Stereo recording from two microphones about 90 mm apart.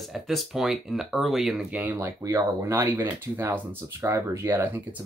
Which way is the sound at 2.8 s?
20° right (ahead or behind).